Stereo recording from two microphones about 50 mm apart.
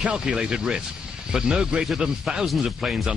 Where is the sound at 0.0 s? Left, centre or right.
Centre.